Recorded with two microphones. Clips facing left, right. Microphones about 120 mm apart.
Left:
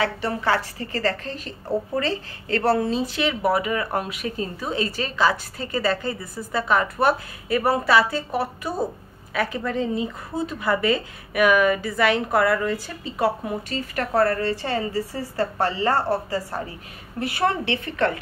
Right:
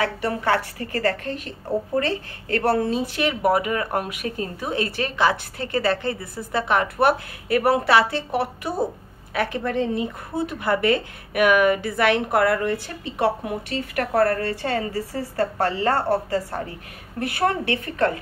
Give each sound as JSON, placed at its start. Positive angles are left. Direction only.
{"t": 0.0, "sound": "a woman's voice", "side_deg": -50}